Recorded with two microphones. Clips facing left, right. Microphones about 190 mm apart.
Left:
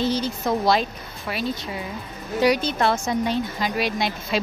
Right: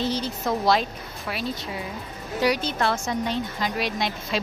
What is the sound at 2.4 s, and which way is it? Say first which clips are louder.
Speech: left 3 dB; 20° left (ahead or behind).